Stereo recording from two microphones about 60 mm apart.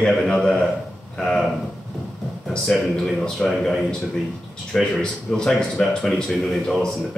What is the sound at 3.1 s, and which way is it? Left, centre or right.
Speech, centre.